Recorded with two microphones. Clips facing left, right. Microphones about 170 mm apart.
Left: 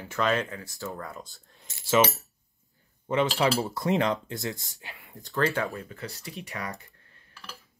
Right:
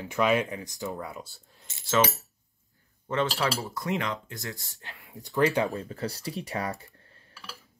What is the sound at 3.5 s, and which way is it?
Speech, 25° left (ahead or behind).